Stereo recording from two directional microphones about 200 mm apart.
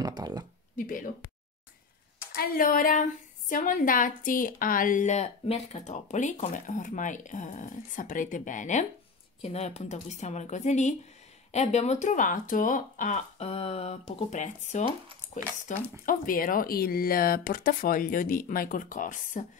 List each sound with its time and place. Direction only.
0.0 s speech: 20° right (ahead or behind)
0.7 s speech: 45° left (ahead or behind)
2.3 s a woman's voice: 45° left (ahead or behind)